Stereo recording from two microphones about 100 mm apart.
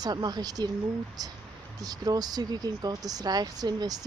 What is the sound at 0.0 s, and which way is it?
Speech, 40° right (ahead or behind).